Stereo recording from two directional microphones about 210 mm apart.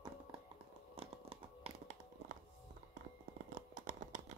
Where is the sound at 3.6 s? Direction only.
40° right (ahead or behind).